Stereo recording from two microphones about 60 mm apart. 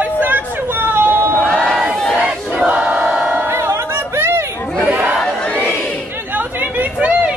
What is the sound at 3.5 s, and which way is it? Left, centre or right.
Chatter, right.